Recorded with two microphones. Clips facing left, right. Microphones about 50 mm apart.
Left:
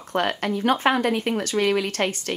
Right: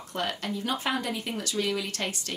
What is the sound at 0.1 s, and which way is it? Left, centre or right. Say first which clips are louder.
Speech: left 8 dB; left.